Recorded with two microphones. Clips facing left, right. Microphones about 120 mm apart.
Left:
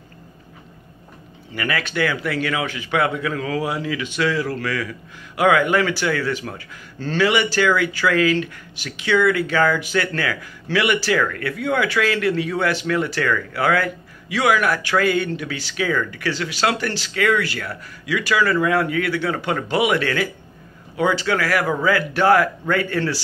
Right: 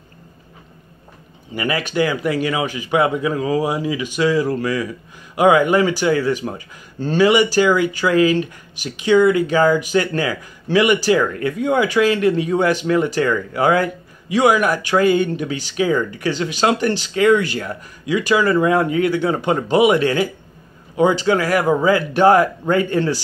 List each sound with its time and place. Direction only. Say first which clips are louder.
1.5 s speech: right 3 dB; 15° right (ahead or behind)